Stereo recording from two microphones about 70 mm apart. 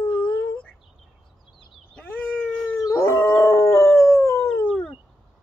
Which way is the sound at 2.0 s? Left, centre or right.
Left.